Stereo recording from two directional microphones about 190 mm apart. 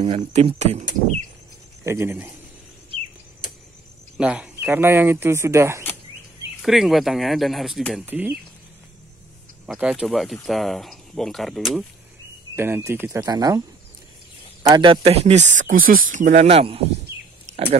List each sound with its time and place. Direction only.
0.0 s speech: 30° right (ahead or behind)
1.9 s speech: 10° right (ahead or behind)
4.2 s speech: 5° right (ahead or behind)
6.6 s speech: centre (ahead or behind)
9.7 s speech: 5° right (ahead or behind)
12.5 s speech: 10° right (ahead or behind)
14.6 s speech: 25° right (ahead or behind)
17.1 s a sound: 15° right (ahead or behind)